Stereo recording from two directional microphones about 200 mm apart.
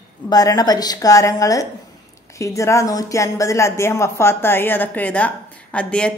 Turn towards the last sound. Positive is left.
turn(degrees=5)  # may be behind; listen again after turning